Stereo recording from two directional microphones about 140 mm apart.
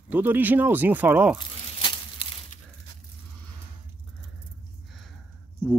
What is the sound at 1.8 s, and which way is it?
Crumpling, 35° left (ahead or behind).